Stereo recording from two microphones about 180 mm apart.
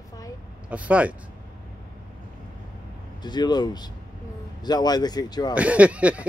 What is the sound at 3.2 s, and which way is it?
Speech, 25° left (ahead or behind).